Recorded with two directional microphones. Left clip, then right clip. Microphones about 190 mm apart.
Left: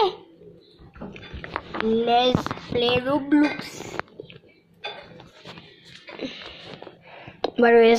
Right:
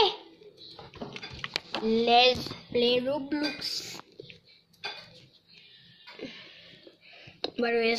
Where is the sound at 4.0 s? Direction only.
10° left (ahead or behind).